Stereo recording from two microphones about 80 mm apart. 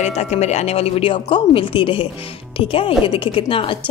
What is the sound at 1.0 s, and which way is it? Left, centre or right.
A woman's voice, left.